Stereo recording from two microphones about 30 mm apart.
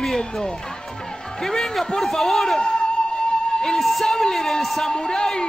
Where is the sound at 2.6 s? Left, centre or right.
Left.